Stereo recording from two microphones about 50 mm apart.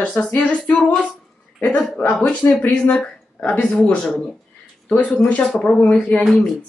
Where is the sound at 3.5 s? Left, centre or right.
Left.